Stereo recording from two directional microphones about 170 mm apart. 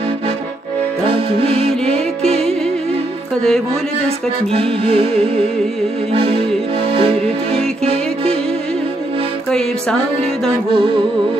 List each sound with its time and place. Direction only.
1.4 s music: 35° right (ahead or behind)
4.5 s music: 35° right (ahead or behind)
6.9 s music: 35° right (ahead or behind)